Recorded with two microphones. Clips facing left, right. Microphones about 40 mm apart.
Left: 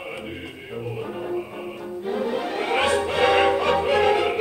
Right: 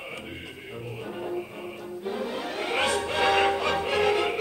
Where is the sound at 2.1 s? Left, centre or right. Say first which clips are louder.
Left 7 dB; centre.